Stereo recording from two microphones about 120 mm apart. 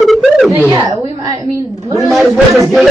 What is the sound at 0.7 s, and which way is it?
A woman's voice, 35° right (ahead or behind).